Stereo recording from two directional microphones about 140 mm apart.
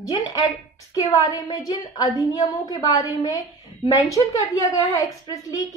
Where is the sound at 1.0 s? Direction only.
25° left (ahead or behind).